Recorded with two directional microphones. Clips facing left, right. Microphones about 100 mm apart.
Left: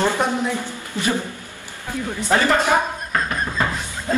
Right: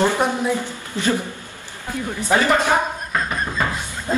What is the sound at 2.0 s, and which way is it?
Speech, 15° right (ahead or behind).